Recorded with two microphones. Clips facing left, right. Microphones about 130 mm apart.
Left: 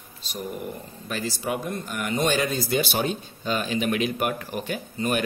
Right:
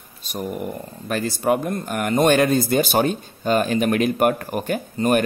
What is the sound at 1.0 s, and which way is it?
Speech, 55° right (ahead or behind).